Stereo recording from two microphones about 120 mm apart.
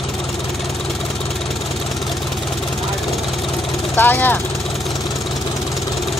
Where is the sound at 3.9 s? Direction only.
15° left (ahead or behind).